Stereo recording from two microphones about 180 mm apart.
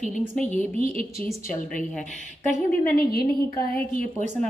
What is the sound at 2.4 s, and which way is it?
A woman's voice, 55° left (ahead or behind).